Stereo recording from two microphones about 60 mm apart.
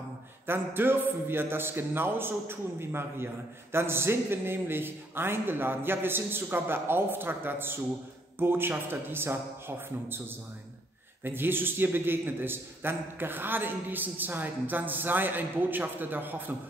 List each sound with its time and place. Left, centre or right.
0.5 s a man's voice: right